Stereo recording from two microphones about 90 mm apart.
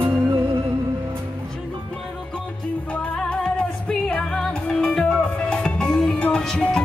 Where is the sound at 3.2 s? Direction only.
10° left (ahead or behind).